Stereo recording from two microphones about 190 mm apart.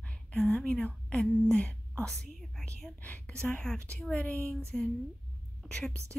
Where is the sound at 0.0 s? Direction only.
5° left (ahead or behind).